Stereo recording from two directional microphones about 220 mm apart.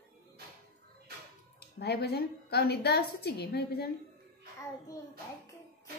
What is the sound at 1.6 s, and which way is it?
A woman's voice, 45° left (ahead or behind).